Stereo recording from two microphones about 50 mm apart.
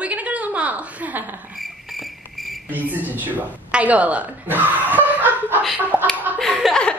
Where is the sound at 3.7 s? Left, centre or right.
Right.